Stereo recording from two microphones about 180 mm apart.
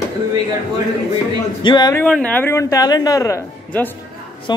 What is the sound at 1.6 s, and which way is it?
Speech, 25° left (ahead or behind).